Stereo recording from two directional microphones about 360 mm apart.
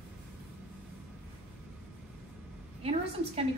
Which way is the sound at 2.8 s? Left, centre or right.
Centre.